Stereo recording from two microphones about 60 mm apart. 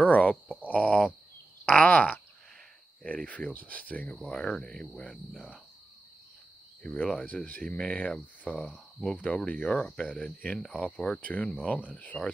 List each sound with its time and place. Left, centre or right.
0.0 s speech: left
0.6 s a sound: centre
1.7 s a sound: left
3.1 s speech: left
4.1 s speech: centre
6.8 s speech: centre
9.1 s speech: centre
11.1 s speech: left